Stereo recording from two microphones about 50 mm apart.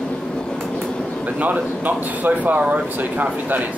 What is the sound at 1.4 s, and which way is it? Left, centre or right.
Speech, right.